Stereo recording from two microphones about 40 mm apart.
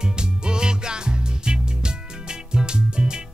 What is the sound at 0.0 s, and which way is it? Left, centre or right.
Music, centre.